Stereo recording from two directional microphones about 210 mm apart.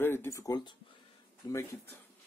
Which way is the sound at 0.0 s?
10° left (ahead or behind).